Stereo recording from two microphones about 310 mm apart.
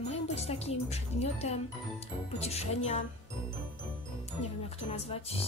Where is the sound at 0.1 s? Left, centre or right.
Centre.